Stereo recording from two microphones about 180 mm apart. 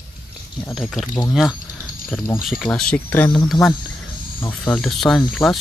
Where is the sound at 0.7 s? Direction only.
Centre (ahead or behind).